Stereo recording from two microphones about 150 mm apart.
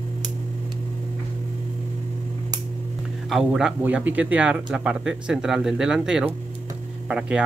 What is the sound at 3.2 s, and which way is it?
Speech, 5° right (ahead or behind).